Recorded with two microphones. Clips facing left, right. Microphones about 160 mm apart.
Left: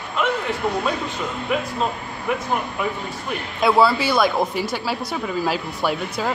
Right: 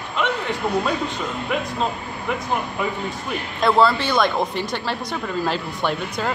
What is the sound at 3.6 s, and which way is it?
Speech, 10° left (ahead or behind).